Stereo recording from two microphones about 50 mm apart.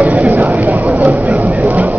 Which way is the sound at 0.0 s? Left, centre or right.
Right.